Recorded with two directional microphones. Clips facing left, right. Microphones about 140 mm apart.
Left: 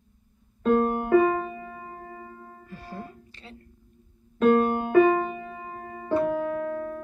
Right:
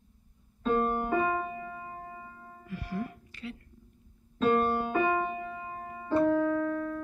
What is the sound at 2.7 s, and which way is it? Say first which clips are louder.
Music: right 4 dB; 30° left (ahead or behind).